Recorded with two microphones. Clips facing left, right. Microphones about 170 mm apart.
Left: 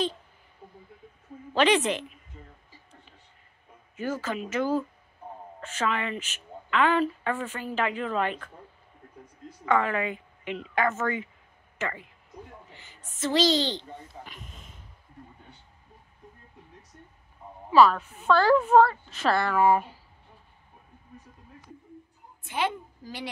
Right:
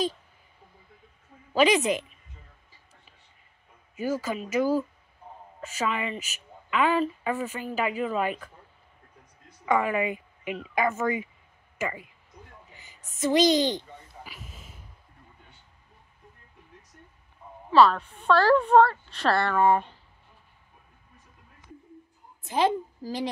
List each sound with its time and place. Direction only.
1.5 s a woman's voice: 10° right (ahead or behind)
3.9 s a woman's voice: 10° right (ahead or behind)
9.7 s a woman's voice: 10° right (ahead or behind)
13.1 s a woman's voice: 15° right (ahead or behind)
14.2 s a sound: 5° right (ahead or behind)
17.6 s a woman's voice: 10° left (ahead or behind)
22.4 s a woman's voice: 40° right (ahead or behind)